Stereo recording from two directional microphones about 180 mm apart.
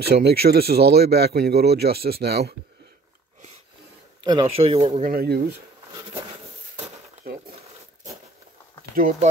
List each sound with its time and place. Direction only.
0.0 s speech: 60° right (ahead or behind)
4.2 s speech: 25° right (ahead or behind)
5.0 s speech: 60° right (ahead or behind)
7.2 s a sound: 55° right (ahead or behind)
8.9 s speech: 50° right (ahead or behind)